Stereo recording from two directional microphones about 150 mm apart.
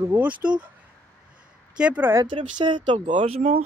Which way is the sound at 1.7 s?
10° right (ahead or behind).